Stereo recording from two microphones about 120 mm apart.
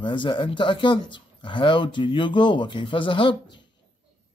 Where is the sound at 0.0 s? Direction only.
45° left (ahead or behind).